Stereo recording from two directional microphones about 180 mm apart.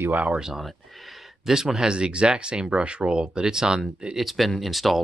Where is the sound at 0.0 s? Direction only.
10° right (ahead or behind).